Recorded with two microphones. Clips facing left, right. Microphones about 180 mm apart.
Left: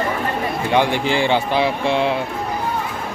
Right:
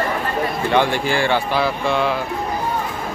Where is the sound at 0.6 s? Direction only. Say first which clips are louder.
Left 1 dB; 15° left (ahead or behind).